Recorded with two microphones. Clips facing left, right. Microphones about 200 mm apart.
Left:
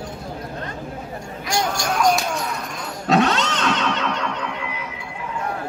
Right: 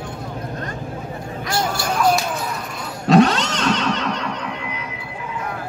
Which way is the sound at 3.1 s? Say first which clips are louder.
Right 4 dB; 35° right (ahead or behind).